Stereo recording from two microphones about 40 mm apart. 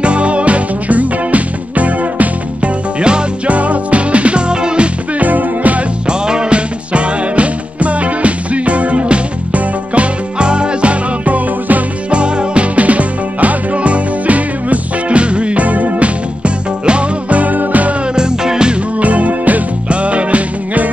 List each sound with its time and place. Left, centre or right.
0.0 s music: right
3.0 s music: right
3.5 s music: right
5.2 s music: right
6.0 s music: right
12.1 s music: right
17.4 s music: right
18.1 s music: centre
18.9 s music: right